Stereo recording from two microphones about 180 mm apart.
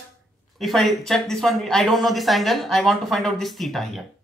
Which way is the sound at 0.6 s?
Centre (ahead or behind).